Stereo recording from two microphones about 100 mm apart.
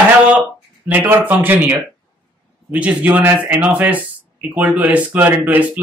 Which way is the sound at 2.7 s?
15° right (ahead or behind).